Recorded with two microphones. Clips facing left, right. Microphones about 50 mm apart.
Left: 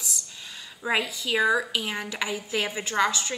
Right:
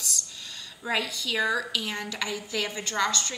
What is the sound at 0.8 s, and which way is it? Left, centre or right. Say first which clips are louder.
A woman's voice: left 3 dB; centre.